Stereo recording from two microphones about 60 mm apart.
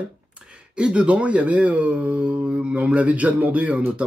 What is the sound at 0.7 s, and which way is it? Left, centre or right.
Speech, centre.